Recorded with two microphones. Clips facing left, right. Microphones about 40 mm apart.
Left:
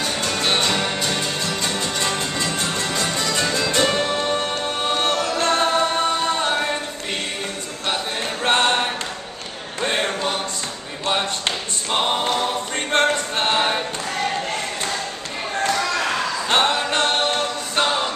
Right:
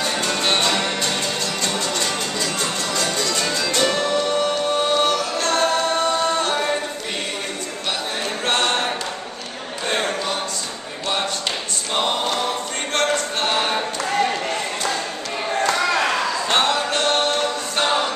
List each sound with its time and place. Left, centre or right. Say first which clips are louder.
0.0 s music: right 1 dB; centre
1.8 s music: even; centre
3.3 s music: left 1 dB; centre
3.9 s music: right 1 dB; left; by 6.8 s centre
8.5 s a capella: left 3 dB; centre
9.8 s a sound: even; left
11.9 s a capella: left 1 dB; centre
16.4 s music: left 1 dB; centre
16.7 s music: even; left
17.1 s a capella: right 1 dB; centre
17.8 s a capella: right 3 dB; centre